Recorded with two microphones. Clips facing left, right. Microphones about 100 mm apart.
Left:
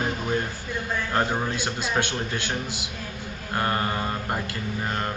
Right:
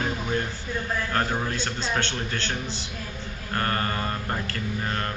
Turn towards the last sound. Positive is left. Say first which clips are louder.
# left 1 dB
turn(degrees=15)  # may be behind; listen again after turning